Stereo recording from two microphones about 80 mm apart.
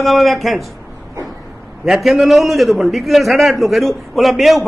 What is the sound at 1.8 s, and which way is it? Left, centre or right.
A man's voice, centre.